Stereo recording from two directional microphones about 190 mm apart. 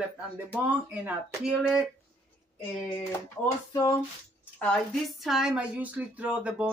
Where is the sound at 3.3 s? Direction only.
15° left (ahead or behind).